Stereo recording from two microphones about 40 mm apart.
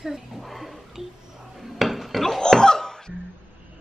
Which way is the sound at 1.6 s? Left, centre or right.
Centre.